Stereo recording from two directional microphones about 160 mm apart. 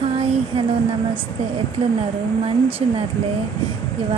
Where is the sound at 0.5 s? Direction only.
40° right (ahead or behind).